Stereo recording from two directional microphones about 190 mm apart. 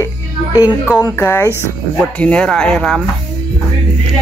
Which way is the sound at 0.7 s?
5° right (ahead or behind).